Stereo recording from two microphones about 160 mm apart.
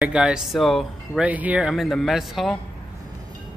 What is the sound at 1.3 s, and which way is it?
Speech, 10° right (ahead or behind).